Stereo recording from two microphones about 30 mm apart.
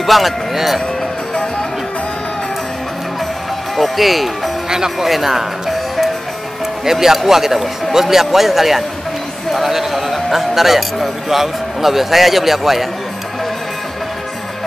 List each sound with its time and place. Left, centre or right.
0.0 s speech: centre
3.7 s a man's voice: centre
4.6 s speech: centre
5.0 s a man's voice: centre